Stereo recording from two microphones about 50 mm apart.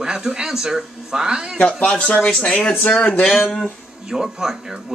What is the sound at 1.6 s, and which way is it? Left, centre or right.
Speech, centre.